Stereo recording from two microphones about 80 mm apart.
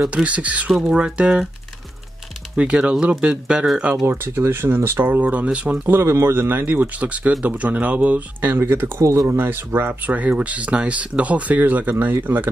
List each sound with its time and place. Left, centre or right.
0.1 s speech: centre
2.5 s speech: centre
4.1 s speech: right
5.9 s speech: right